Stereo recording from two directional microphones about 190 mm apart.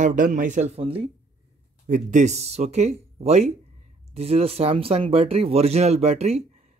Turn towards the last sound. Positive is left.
turn(degrees=-35)  # may be behind; listen again after turning